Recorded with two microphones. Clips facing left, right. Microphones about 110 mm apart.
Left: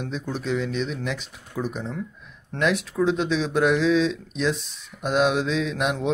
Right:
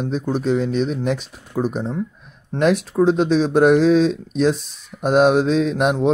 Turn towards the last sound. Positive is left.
turn(degrees=-45)  # may be behind; listen again after turning